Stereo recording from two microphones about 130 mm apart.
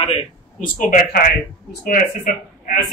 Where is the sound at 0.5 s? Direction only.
90° left.